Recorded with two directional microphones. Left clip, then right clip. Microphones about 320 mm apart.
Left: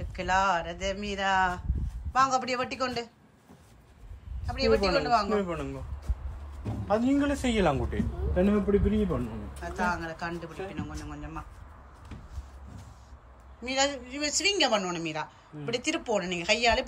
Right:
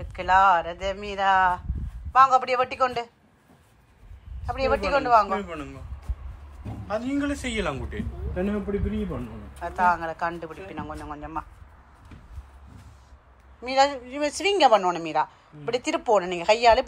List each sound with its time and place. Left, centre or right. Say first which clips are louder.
0.0 s speech: right 7 dB; centre
4.5 s speech: right 2 dB; centre
5.4 s a man's voice: left 2 dB; left
6.9 s a man's voice: left 1 dB; left
8.4 s speech: left 3 dB; centre
13.7 s speech: right 7 dB; centre